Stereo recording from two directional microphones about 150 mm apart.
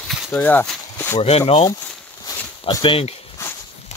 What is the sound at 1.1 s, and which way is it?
Speech, 40° left (ahead or behind).